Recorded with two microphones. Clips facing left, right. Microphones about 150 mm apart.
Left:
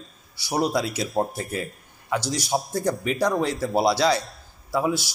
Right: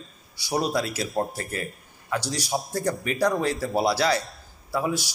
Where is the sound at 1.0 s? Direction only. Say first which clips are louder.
Left 2 dB; centre (ahead or behind).